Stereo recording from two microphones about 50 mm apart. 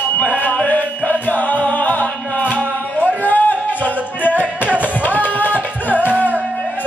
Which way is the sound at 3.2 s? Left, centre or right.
Left.